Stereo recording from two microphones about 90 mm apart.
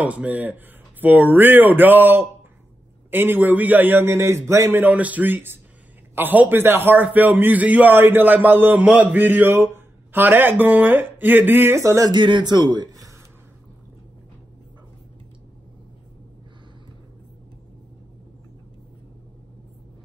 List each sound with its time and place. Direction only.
0.0 s a man's voice: 15° right (ahead or behind)
11.8 s speech: 35° right (ahead or behind)
12.1 s a man's voice: 60° right (ahead or behind); by 13.1 s 45° right (ahead or behind)